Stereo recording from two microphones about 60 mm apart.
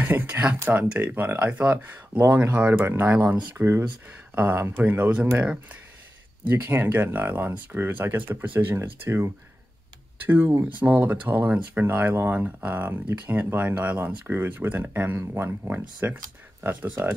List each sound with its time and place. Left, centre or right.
0.0 s speech: right
10.2 s speech: right